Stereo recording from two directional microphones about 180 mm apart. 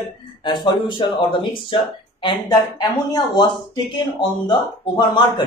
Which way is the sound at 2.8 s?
20° left (ahead or behind).